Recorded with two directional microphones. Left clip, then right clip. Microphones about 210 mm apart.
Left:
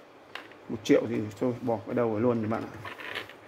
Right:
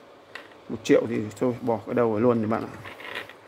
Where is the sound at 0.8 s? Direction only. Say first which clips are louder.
Right 3 dB; 15° right (ahead or behind).